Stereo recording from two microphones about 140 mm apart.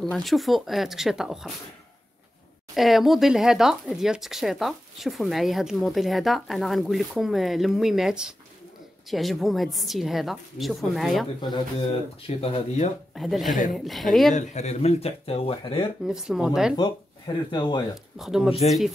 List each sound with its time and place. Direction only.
0.0 s speech: centre (ahead or behind)
2.7 s speech: centre (ahead or behind)
12.3 s speech: 45° left (ahead or behind)
13.1 s speech: centre (ahead or behind)
14.3 s speech: 55° left (ahead or behind)
16.1 s speech: 5° right (ahead or behind)
16.7 s speech: 30° left (ahead or behind)
17.9 s speech: 5° right (ahead or behind)